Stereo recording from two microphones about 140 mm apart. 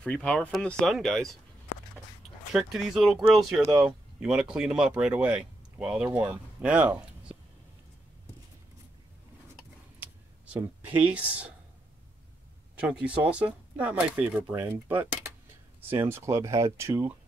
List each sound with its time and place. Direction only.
0.0 s speech: 10° left (ahead or behind)
2.5 s speech: 5° right (ahead or behind)
9.9 s a sound: 10° right (ahead or behind)
12.8 s speech: 10° right (ahead or behind)